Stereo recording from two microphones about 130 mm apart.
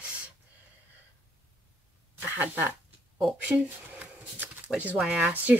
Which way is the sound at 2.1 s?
15° right (ahead or behind).